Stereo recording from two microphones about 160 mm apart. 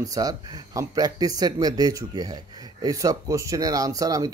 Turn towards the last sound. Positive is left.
turn(degrees=-20)  # may be behind; listen again after turning